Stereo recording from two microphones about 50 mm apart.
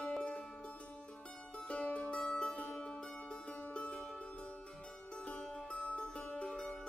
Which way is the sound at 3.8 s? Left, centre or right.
Centre.